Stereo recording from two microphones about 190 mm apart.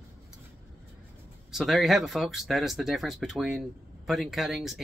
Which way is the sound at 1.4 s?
Centre (ahead or behind).